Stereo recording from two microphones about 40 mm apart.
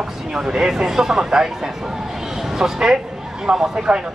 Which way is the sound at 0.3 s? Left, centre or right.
Centre.